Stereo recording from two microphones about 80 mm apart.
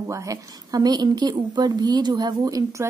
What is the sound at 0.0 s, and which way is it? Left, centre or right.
A woman's voice, right.